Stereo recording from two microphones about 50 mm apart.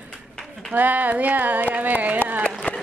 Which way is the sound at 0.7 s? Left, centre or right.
Right.